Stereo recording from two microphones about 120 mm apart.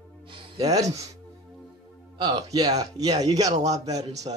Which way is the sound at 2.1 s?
35° right (ahead or behind).